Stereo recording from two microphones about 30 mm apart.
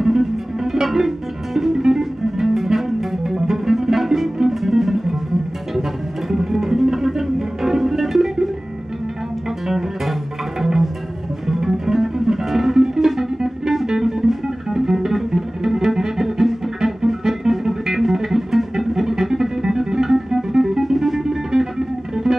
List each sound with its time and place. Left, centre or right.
0.0 s music: centre
9.7 s music: centre